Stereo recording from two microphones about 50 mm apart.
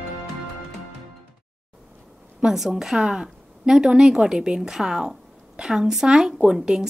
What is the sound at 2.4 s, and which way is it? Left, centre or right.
A woman's voice, centre.